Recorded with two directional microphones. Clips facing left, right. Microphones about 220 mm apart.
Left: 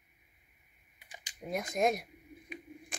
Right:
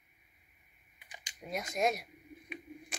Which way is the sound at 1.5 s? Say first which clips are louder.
Left 3 dB; 50° left (ahead or behind).